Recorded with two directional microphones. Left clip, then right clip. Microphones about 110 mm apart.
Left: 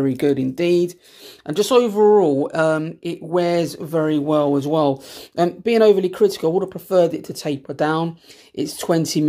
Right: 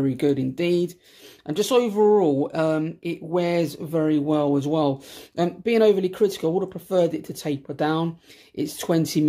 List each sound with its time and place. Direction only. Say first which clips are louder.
0.0 s speech: left 4 dB; 30° left (ahead or behind)